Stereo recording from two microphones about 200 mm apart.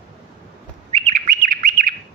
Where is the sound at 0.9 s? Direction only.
40° right (ahead or behind).